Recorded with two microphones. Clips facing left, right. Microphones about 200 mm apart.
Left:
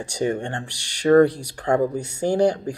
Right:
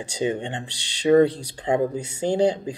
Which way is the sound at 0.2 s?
20° right (ahead or behind).